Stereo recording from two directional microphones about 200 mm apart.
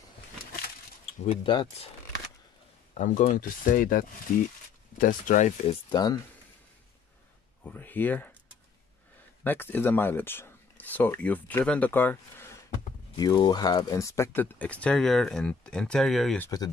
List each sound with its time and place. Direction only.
1.2 s speech: 30° left (ahead or behind)
2.9 s speech: 40° left (ahead or behind)
5.7 s speech: 20° left (ahead or behind)
7.6 s speech: 10° left (ahead or behind)
9.4 s speech: 10° left (ahead or behind)
13.1 s speech: 20° left (ahead or behind); by 16.4 s centre (ahead or behind)
16.4 s speech: 20° left (ahead or behind)